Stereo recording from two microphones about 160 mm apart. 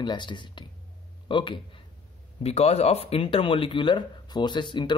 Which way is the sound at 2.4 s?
40° left (ahead or behind).